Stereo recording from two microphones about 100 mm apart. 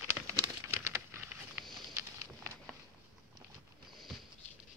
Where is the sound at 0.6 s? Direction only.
25° right (ahead or behind).